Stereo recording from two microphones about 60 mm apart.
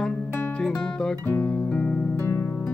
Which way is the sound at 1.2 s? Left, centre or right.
Left.